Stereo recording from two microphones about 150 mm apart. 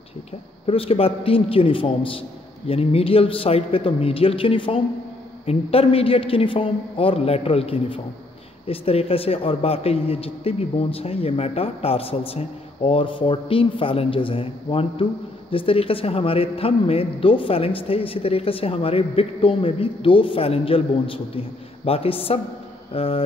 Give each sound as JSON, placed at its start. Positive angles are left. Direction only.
{"t": 0.7, "sound": "a man's voice", "side_deg": 40}